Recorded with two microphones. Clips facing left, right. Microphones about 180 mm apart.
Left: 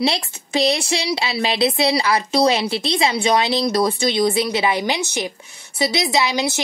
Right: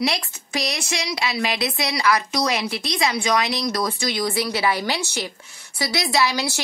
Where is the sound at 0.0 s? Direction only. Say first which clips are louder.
Left 3 dB; 30° left (ahead or behind).